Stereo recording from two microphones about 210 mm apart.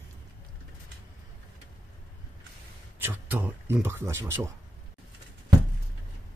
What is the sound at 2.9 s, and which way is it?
Speech, 10° right (ahead or behind).